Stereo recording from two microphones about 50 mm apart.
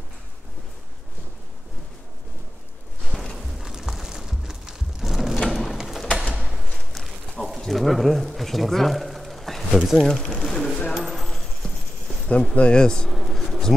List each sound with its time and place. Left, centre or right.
3.1 s walk: centre
3.6 s music: centre
5.5 s bird: centre
5.8 s a sound: centre
9.8 s speech: centre
10.0 s speech: centre
10.4 s a sound: centre
11.6 s clip-clop: left
12.5 s speech: centre
13.1 s a sound: centre